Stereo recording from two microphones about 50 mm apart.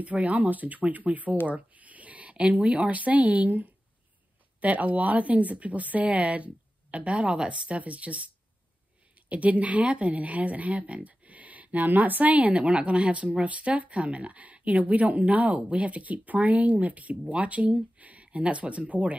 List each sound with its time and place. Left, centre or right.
0.0 s speech: right
9.3 s speech: right